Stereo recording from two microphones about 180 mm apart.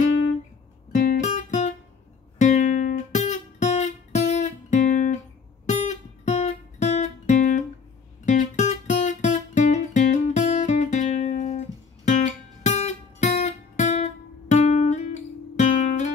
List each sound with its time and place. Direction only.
0.9 s guitar: 40° left (ahead or behind)
5.7 s music: 40° left (ahead or behind)